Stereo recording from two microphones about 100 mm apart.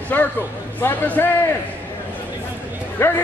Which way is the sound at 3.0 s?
20° left (ahead or behind).